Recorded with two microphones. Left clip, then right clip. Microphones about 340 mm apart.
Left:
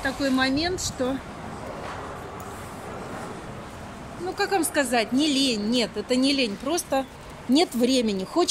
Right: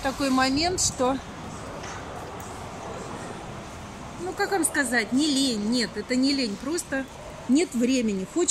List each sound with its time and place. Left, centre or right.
0.0 s speech: centre
4.4 s speech: centre